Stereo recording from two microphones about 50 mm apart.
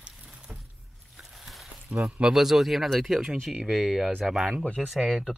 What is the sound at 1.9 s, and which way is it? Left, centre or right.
Speech, right.